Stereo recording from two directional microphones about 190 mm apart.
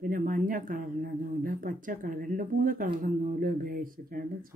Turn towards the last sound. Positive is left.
turn(degrees=-50)  # may be behind; listen again after turning